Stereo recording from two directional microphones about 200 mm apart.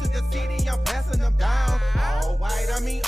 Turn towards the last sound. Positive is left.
turn(degrees=0)  # may be behind; listen again after turning